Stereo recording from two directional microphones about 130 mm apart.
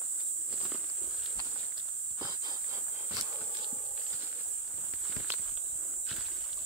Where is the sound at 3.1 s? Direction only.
20° right (ahead or behind).